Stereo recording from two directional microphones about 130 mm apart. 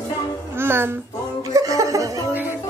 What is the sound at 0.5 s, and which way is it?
Music, 15° right (ahead or behind).